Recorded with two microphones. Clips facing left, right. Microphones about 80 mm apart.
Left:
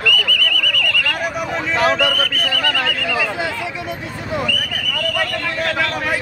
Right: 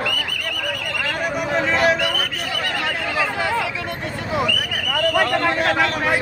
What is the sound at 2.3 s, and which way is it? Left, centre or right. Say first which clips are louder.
Neigh: left 4 dB; left.